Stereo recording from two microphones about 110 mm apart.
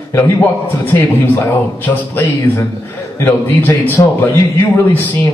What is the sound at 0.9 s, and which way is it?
A man's voice, 15° left (ahead or behind).